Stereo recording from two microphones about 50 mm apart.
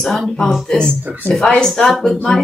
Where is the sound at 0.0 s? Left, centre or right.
Centre.